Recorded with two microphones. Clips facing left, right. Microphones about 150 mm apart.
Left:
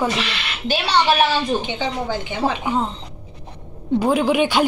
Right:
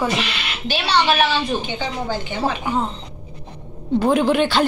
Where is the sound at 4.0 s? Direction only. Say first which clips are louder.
Right 1 dB; 5° left (ahead or behind).